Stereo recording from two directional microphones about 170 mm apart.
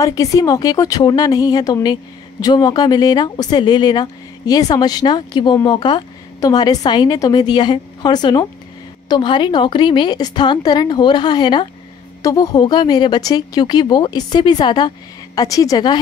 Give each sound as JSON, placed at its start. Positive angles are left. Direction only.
{"t": 0.0, "sound": "speech", "side_deg": 20}